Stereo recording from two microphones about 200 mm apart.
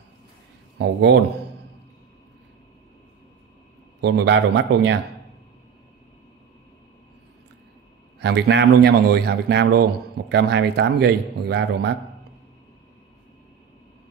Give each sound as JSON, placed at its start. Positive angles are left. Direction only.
{"t": 0.7, "sound": "a man's voice", "side_deg": -60}
{"t": 4.0, "sound": "a man's voice", "side_deg": -60}
{"t": 8.2, "sound": "a man's voice", "side_deg": -60}